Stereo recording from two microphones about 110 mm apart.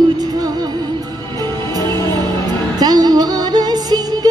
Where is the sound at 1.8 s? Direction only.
40° right (ahead or behind).